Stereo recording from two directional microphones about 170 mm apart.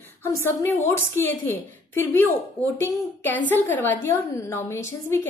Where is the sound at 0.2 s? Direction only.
15° left (ahead or behind).